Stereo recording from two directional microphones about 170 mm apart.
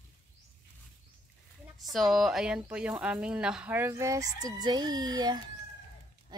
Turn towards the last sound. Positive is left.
turn(degrees=-25)  # may be behind; listen again after turning